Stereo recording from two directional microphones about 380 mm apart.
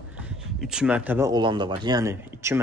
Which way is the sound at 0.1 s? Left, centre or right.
Centre.